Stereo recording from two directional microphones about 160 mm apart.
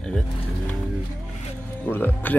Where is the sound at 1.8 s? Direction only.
10° left (ahead or behind).